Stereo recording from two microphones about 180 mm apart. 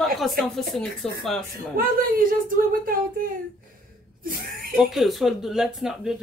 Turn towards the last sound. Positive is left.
turn(degrees=-5)  # may be behind; listen again after turning